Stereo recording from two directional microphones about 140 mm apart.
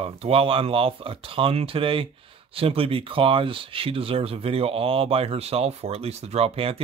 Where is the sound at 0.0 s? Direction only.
45° right (ahead or behind).